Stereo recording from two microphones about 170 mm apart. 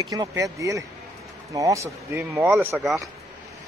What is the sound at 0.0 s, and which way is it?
Speech, 20° right (ahead or behind).